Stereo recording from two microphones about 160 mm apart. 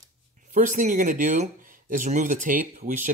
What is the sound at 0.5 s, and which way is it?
Speech, 55° right (ahead or behind).